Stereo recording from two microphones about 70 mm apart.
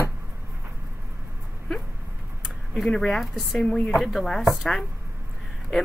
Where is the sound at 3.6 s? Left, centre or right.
Centre.